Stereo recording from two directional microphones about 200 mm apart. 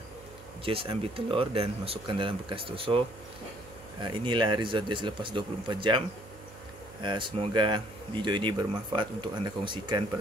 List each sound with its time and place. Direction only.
0.7 s speech: 25° right (ahead or behind)
4.0 s speech: 25° right (ahead or behind)